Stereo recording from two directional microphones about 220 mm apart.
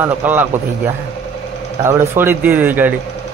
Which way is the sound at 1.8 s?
10° right (ahead or behind).